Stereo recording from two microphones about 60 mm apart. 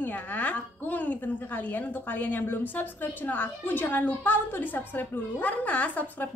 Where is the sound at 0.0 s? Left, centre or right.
Left.